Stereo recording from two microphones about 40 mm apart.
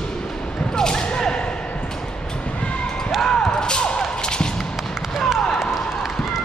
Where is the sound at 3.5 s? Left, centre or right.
Left.